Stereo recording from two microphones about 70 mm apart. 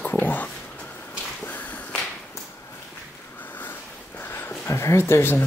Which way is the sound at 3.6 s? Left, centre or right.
Left.